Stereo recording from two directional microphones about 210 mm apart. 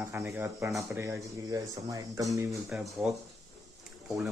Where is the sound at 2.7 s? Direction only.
5° right (ahead or behind).